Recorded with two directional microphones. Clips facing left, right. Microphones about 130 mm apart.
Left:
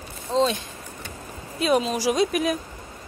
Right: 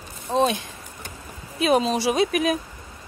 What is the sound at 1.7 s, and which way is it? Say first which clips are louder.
Speech: right 1 dB; 25° right (ahead or behind).